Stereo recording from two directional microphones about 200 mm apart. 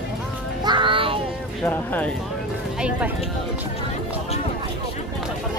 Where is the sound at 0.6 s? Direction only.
25° right (ahead or behind).